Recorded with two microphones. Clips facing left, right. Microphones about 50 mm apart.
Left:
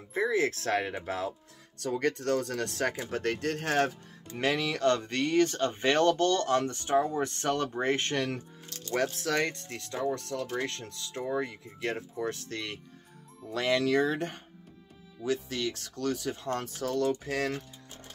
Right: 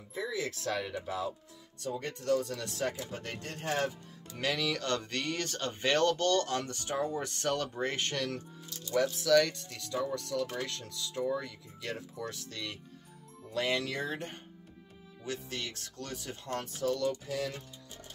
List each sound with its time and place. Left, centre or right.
0.1 s speech: left
1.8 s speech: left
4.4 s speech: left
8.6 s speech: left
13.5 s speech: left
15.7 s speech: left
16.8 s speech: left